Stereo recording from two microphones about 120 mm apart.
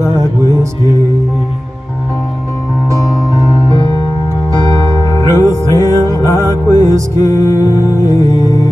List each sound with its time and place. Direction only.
5.3 s music: 30° left (ahead or behind)